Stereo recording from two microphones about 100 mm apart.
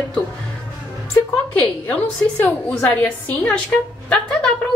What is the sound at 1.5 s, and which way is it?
A woman's voice, 15° left (ahead or behind).